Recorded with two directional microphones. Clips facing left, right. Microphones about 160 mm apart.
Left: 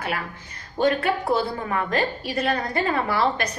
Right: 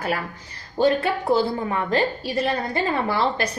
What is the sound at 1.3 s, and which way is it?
A woman's voice, 25° right (ahead or behind).